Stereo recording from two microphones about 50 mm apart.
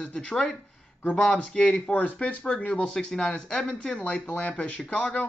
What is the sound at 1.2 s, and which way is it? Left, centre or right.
Speech, centre.